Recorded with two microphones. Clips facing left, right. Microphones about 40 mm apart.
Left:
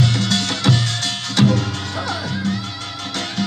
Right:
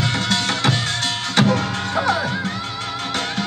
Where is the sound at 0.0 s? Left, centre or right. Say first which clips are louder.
Left 1 dB; right.